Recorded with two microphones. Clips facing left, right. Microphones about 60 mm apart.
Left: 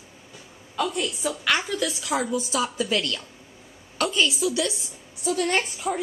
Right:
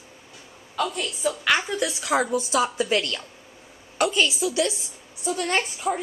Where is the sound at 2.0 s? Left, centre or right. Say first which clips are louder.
Right 3 dB; right.